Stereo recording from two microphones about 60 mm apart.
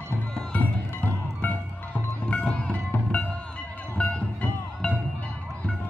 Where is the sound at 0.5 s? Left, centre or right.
Left.